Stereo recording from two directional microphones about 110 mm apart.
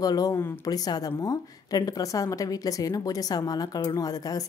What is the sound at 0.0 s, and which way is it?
A woman's voice, 35° left (ahead or behind).